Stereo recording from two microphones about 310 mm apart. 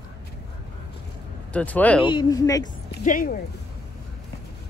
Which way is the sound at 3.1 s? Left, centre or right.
Left.